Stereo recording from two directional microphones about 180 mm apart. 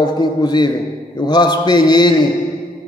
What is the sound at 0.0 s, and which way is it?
A man's voice, 25° left (ahead or behind).